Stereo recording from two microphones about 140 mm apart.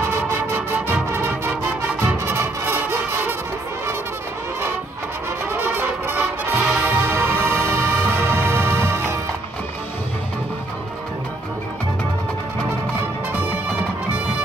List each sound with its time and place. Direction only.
0.0 s music: 10° right (ahead or behind)
5.5 s music: 15° right (ahead or behind)